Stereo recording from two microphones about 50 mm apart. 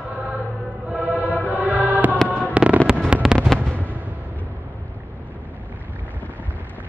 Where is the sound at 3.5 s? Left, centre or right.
Centre.